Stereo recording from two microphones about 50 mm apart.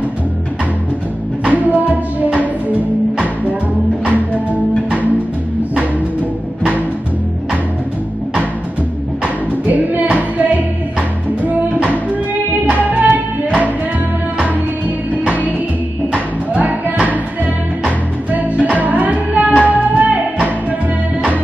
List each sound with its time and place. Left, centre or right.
1.4 s music: right
9.2 s music: right
18.3 s music: right